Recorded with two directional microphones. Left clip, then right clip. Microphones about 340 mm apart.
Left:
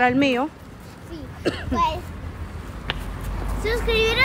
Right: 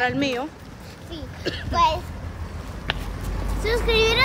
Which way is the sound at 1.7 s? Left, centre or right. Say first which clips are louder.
Right 4 dB; centre.